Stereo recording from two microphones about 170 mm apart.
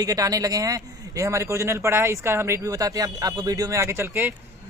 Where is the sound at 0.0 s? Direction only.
20° right (ahead or behind).